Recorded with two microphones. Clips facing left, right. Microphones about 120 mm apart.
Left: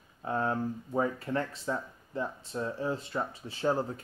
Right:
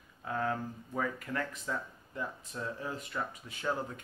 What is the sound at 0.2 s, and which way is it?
Speech, 30° left (ahead or behind).